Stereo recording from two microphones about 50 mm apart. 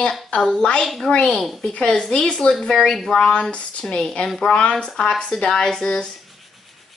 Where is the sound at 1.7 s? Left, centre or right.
Left.